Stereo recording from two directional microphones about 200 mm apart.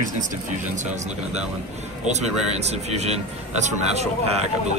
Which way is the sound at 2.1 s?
35° right (ahead or behind).